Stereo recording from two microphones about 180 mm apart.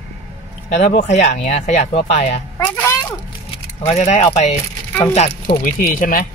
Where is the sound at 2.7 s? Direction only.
15° left (ahead or behind).